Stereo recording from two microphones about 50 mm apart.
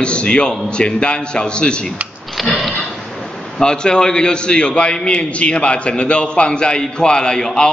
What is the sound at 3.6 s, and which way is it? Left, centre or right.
A man's voice, centre.